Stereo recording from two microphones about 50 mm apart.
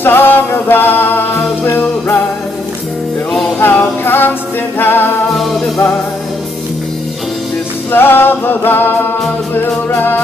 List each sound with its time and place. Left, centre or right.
0.0 s music: left
3.5 s music: left
7.9 s music: left